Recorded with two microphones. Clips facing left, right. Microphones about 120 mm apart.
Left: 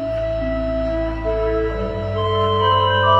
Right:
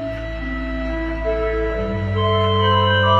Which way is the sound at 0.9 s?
20° left (ahead or behind).